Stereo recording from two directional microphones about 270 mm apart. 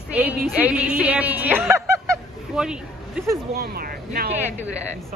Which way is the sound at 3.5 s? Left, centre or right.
Right.